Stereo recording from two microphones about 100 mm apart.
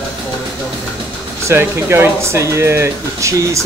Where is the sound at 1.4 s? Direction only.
25° right (ahead or behind).